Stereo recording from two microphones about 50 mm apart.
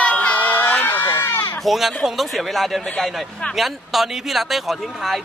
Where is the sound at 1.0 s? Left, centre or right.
Left.